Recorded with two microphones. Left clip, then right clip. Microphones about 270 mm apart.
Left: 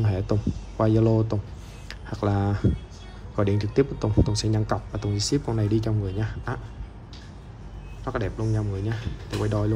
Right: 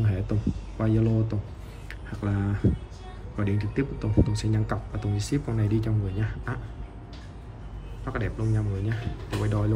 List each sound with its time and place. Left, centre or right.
0.0 s speech: centre
8.0 s speech: centre